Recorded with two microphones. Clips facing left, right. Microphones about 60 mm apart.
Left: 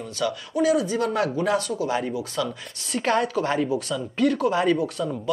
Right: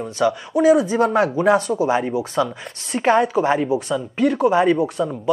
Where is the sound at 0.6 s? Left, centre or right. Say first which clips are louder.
Right 6 dB; centre; by 3.1 s right.